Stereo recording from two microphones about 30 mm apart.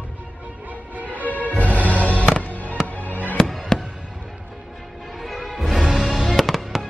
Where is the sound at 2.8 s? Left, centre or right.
Left.